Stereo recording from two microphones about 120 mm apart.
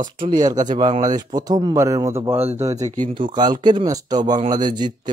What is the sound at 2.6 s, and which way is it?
Speech, 65° right (ahead or behind).